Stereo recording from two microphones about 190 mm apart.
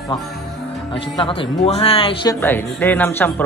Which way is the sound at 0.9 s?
25° left (ahead or behind).